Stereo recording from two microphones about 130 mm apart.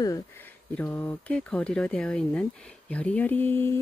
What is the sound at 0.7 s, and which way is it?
Speech, 15° left (ahead or behind).